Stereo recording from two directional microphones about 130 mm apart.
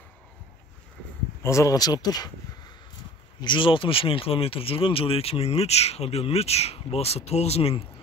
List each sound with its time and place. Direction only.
1.4 s speech: 25° left (ahead or behind)
3.3 s speech: 40° left (ahead or behind)